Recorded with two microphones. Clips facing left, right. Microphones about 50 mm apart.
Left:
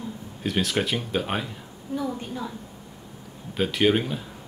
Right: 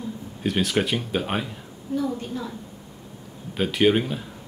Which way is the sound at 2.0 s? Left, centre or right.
Centre.